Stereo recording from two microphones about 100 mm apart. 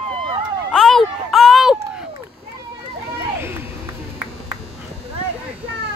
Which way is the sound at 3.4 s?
25° right (ahead or behind).